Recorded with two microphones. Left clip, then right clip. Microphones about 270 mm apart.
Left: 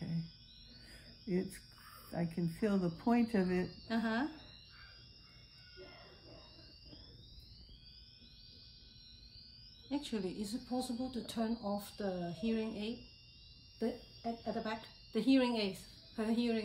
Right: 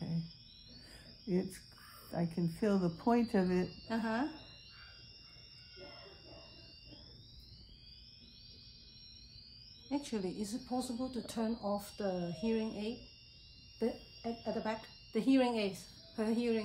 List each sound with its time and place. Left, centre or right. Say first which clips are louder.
0.0 s a sound: right 1 dB; centre
1.2 s speech: right 2 dB; centre
9.8 s speech: right 1 dB; centre